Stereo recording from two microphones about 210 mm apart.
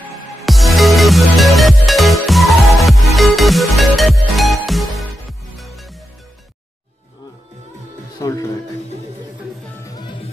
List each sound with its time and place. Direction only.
0.0 s music: centre (ahead or behind)
8.2 s music: 15° left (ahead or behind)
9.8 s music: 20° left (ahead or behind)